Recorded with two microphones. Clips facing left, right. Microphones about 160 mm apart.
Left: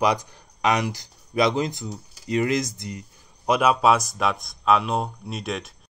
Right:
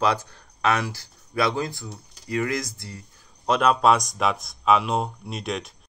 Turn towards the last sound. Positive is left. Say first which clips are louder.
# even
turn(degrees=0)  # may be behind; listen again after turning